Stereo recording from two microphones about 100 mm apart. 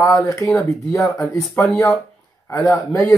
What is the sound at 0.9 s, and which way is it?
A man's voice, 30° left (ahead or behind).